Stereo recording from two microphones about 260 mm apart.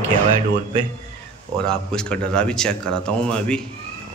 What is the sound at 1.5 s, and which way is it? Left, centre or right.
A man's voice, centre.